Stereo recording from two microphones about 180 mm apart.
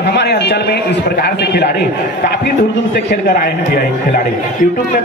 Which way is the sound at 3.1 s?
60° left (ahead or behind).